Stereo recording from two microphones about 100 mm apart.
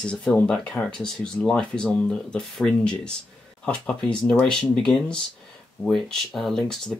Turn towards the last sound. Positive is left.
turn(degrees=5)  # may be behind; listen again after turning